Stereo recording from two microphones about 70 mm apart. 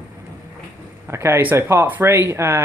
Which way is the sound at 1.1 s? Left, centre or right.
Right.